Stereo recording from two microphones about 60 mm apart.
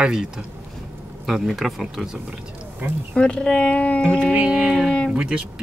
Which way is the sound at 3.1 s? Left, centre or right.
Centre.